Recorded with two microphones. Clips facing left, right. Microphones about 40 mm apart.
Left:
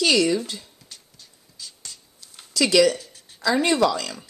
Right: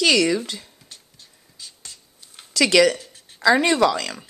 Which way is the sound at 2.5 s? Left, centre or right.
Right.